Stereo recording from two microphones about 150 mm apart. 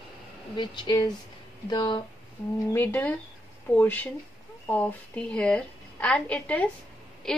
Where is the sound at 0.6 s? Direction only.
30° left (ahead or behind).